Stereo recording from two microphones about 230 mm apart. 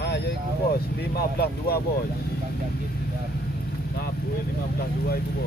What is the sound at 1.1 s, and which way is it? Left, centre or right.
Speech, left.